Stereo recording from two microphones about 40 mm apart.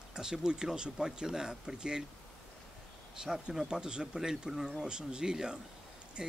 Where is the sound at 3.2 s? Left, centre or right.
Centre.